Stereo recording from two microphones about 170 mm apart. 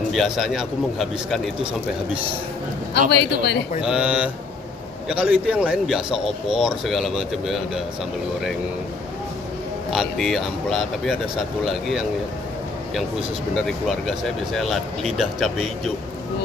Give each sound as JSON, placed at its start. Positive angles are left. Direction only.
{"t": 0.1, "sound": "speech", "side_deg": 0}
{"t": 2.9, "sound": "a man's voice", "side_deg": 75}
{"t": 3.8, "sound": "mantra", "side_deg": -5}
{"t": 5.0, "sound": "speech", "side_deg": -5}
{"t": 9.8, "sound": "speech", "side_deg": 0}
{"t": 13.6, "sound": "speech", "side_deg": 0}